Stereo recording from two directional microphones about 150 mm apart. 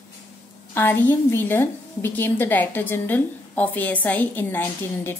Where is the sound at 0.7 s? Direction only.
15° left (ahead or behind).